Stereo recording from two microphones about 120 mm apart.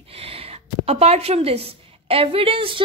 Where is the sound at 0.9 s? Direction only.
60° right (ahead or behind).